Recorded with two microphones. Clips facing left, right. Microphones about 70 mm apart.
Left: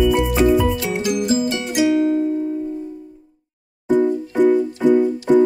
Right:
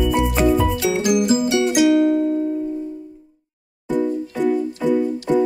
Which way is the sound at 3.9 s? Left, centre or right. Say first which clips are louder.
Left 4 dB; left.